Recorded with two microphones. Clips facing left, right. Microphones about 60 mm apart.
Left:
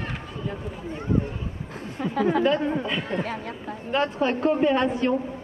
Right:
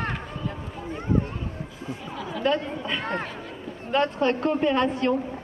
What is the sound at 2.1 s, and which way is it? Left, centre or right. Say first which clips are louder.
Speech: left 13 dB; left.